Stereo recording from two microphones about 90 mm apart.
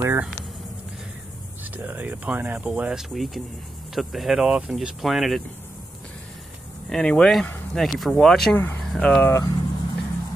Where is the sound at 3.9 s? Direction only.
Centre (ahead or behind).